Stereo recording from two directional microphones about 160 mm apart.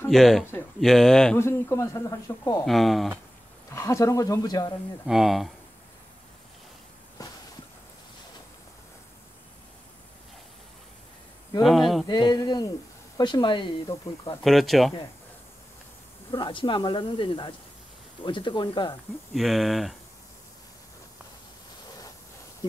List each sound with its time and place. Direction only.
0.1 s speech: centre (ahead or behind)
1.4 s speech: 15° left (ahead or behind)
2.6 s speech: centre (ahead or behind)
3.7 s speech: 20° left (ahead or behind)
5.0 s speech: centre (ahead or behind)
7.2 s a sound: 20° left (ahead or behind)
11.6 s speech: centre (ahead or behind)
12.1 s speech: 30° left (ahead or behind)
14.4 s speech: centre (ahead or behind)
16.3 s speech: 30° left (ahead or behind)
19.3 s speech: centre (ahead or behind)